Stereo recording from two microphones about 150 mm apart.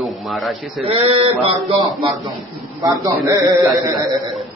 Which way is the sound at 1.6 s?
Centre (ahead or behind).